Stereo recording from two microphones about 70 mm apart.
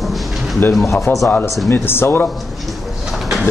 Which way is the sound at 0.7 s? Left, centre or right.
Centre.